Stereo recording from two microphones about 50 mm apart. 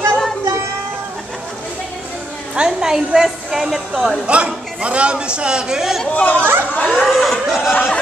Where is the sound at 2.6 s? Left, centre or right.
Centre.